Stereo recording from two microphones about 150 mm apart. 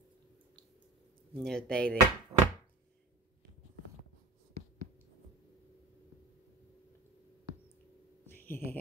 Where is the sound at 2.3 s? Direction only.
25° right (ahead or behind).